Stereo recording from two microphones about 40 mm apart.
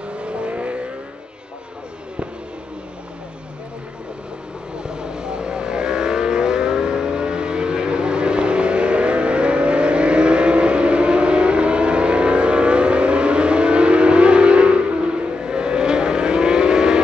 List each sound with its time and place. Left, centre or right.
0.1 s vehicle: right
4.7 s vehicle: right